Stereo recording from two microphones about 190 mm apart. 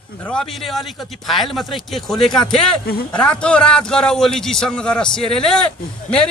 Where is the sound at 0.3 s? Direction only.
5° left (ahead or behind).